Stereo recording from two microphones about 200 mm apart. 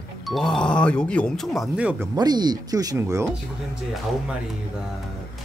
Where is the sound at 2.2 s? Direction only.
20° right (ahead or behind).